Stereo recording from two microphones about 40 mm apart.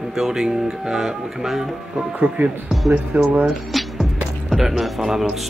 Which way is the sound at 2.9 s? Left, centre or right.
Right.